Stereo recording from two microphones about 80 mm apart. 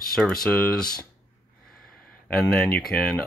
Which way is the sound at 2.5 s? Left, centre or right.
Centre.